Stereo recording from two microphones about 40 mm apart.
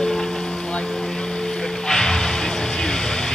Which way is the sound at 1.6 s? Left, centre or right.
Centre.